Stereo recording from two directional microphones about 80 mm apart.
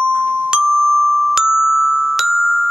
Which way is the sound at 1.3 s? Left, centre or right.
Centre.